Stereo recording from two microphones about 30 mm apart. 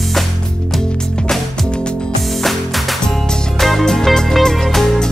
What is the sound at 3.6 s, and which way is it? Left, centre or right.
Music, centre.